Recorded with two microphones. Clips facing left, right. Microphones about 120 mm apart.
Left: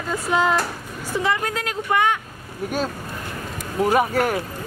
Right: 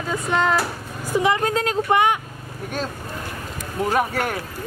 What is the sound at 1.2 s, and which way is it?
Speech, 20° right (ahead or behind).